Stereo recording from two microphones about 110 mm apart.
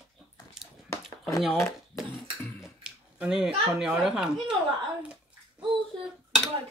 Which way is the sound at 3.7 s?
5° right (ahead or behind).